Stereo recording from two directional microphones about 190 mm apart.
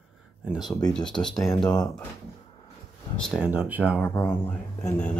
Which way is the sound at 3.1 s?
Centre (ahead or behind).